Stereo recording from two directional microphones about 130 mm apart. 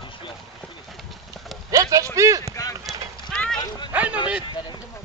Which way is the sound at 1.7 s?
25° right (ahead or behind).